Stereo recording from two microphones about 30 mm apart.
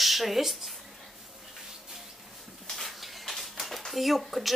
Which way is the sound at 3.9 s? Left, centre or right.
Centre.